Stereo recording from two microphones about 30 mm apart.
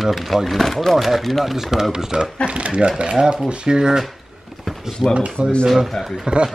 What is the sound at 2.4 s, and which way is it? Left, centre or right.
Speech, right.